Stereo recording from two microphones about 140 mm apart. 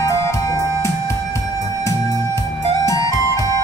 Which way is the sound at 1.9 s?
20° left (ahead or behind).